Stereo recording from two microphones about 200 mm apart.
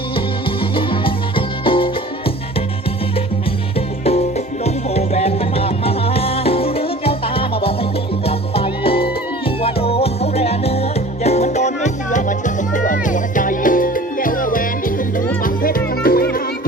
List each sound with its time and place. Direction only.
1.6 s music: 25° left (ahead or behind)
4.6 s music: 30° left (ahead or behind); by 16.3 s 50° left (ahead or behind)